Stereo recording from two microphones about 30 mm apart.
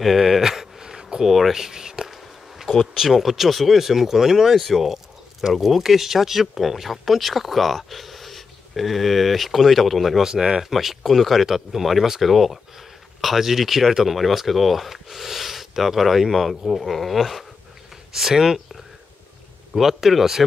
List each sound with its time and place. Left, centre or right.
0.0 s a sound: centre
1.2 s speech: centre
1.5 s speech: centre
2.9 s speech: centre
10.2 s speech: right
10.6 s speech: centre
11.8 s speech: centre
19.7 s speech: centre